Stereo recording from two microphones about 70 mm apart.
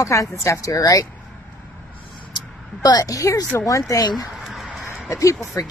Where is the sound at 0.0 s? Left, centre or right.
Left.